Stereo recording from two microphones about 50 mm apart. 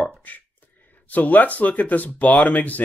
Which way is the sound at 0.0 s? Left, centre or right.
Left.